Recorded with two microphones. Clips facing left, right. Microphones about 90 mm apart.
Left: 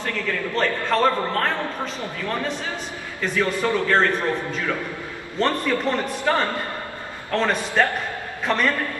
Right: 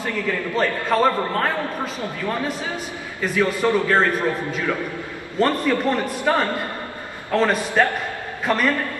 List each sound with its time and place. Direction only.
0.0 s a man's voice: 5° right (ahead or behind)
3.2 s a man's voice: 10° right (ahead or behind)